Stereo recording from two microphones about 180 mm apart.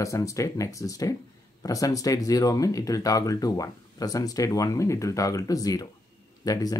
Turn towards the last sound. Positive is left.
turn(degrees=20)  # may be behind; listen again after turning